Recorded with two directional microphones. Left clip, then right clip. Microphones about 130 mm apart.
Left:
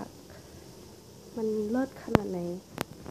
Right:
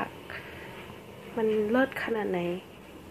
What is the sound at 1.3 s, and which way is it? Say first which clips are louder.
Speech: right 5 dB; 10° right (ahead or behind).